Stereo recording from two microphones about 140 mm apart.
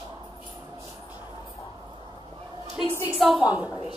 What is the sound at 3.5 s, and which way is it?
Speech, 10° right (ahead or behind).